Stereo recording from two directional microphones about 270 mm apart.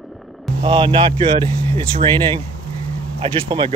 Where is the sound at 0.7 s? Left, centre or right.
Centre.